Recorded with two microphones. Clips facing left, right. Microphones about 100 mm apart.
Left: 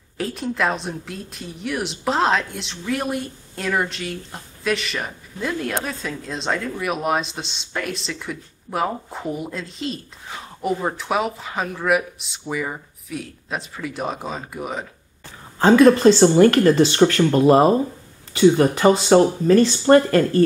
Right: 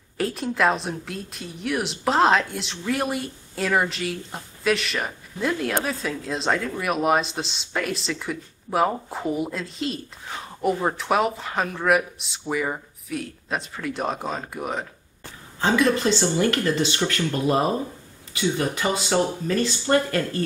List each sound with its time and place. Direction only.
0.2 s a woman's voice: centre (ahead or behind)
15.6 s speech: 45° left (ahead or behind)
18.3 s speech: 40° left (ahead or behind)